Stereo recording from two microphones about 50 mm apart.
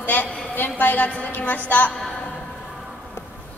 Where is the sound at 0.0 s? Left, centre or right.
Left.